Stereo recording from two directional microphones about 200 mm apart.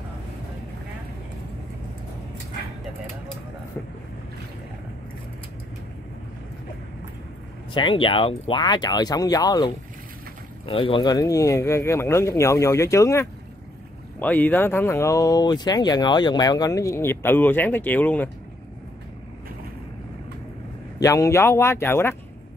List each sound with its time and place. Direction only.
7.7 s speech: 25° left (ahead or behind)
10.7 s speech: 25° left (ahead or behind); by 18.3 s 10° left (ahead or behind)
21.0 s speech: 15° left (ahead or behind)